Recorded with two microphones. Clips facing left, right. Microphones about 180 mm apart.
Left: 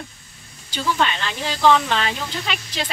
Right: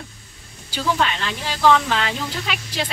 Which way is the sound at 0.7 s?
10° right (ahead or behind).